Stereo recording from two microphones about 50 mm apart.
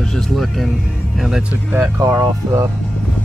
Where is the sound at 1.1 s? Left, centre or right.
Centre.